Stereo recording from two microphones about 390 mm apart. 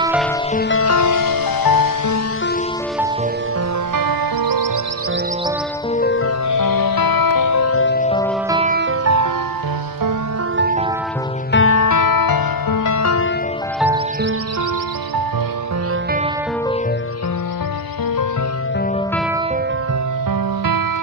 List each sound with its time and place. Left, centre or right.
0.0 s music: centre
0.6 s music: left
3.9 s music: right
5.9 s music: left
6.5 s music: left
8.5 s music: centre
9.0 s music: right
11.5 s music: left
13.7 s music: centre